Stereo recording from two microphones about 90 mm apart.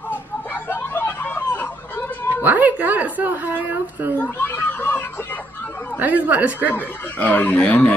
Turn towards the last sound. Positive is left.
turn(degrees=15)  # may be behind; listen again after turning